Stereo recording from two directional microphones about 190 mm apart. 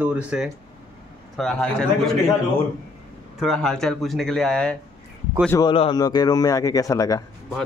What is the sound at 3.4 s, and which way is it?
Speech, 5° left (ahead or behind).